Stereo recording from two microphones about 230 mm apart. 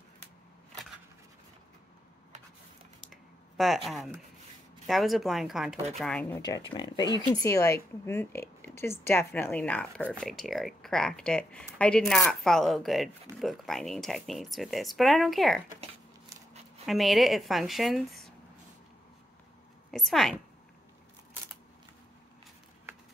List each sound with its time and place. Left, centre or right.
3.1 s a sound: centre
4.8 s a woman's voice: centre
16.8 s speech: centre
19.9 s speech: centre